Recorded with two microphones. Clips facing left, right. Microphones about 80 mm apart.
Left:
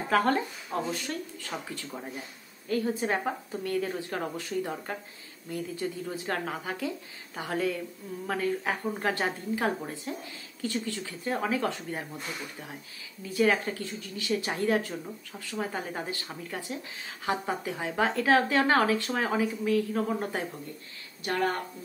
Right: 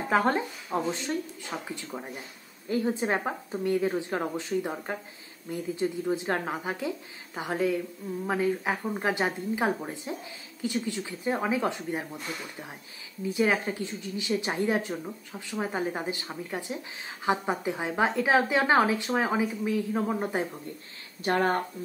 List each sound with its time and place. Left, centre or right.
0.1 s a woman's voice: right
13.2 s a woman's voice: right
21.2 s speech: right